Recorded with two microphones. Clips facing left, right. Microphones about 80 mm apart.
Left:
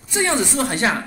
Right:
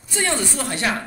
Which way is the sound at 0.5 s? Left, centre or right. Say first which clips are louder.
Left 4 dB; left.